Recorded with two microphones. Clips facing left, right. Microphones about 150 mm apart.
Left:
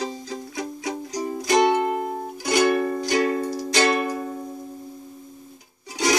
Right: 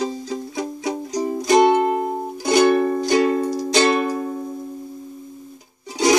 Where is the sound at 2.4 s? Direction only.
25° right (ahead or behind).